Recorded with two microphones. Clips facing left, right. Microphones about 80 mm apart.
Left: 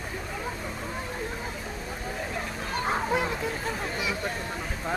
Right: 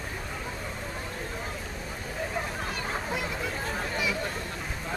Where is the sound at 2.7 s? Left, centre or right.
Left.